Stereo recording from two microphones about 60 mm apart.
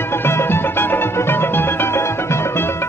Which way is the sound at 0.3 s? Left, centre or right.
Left.